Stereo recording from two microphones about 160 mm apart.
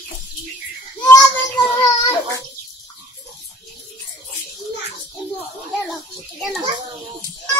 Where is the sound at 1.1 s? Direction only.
20° left (ahead or behind).